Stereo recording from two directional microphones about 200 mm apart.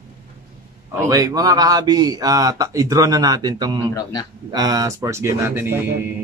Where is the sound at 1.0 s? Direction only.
15° right (ahead or behind).